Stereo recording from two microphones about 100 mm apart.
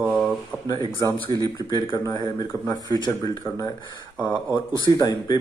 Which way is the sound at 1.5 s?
45° left (ahead or behind).